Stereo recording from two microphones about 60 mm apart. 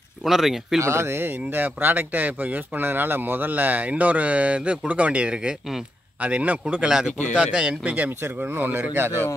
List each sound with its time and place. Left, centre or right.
0.2 s speech: centre
0.7 s speech: right
6.9 s speech: centre
8.2 s speech: right